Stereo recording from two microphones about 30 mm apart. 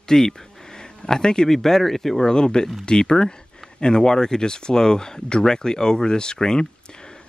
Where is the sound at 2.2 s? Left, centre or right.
Left.